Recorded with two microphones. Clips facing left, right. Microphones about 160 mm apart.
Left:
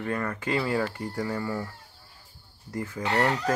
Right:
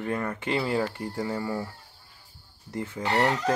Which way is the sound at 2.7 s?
25° right (ahead or behind).